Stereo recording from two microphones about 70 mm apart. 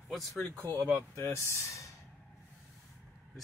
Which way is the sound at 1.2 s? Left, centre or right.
Left.